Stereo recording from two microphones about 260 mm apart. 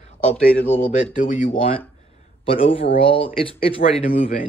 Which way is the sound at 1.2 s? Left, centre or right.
Left.